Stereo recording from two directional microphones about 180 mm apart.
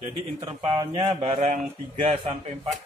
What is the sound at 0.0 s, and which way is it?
Speech, 35° right (ahead or behind).